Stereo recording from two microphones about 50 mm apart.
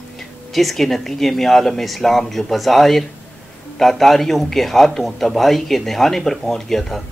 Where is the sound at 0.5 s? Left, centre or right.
Centre.